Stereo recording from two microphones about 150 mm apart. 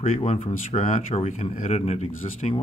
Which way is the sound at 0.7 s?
55° left (ahead or behind).